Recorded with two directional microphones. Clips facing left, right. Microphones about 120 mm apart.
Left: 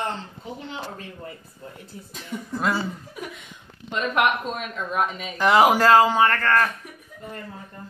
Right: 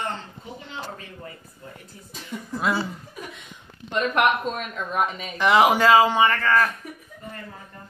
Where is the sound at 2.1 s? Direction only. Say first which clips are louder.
Left 1 dB; centre (ahead or behind).